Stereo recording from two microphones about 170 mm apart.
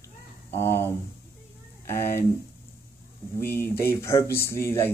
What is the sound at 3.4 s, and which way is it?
Speech, 15° left (ahead or behind).